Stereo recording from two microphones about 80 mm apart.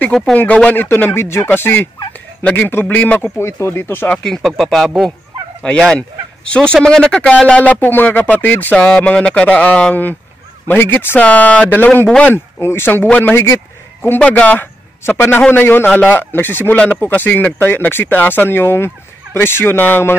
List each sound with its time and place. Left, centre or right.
0.0 s a man's voice: centre
0.7 s speech: left
4.1 s a man's voice: centre; by 8.7 s left
8.7 s a man's voice: centre
12.5 s speech: left
14.2 s a man's voice: centre